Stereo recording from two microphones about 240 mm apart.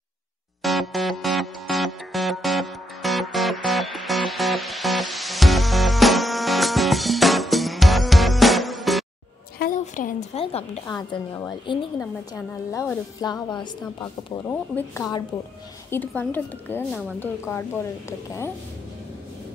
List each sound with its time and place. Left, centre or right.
0.6 s music: centre
9.6 s a sound: left; by 11.8 s centre
12.0 s a woman's voice: centre